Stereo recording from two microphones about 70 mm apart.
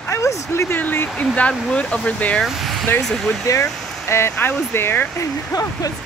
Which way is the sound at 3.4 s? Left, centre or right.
Left.